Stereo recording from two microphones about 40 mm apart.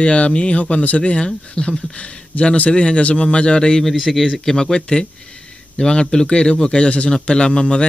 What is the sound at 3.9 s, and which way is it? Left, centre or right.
Speech, centre.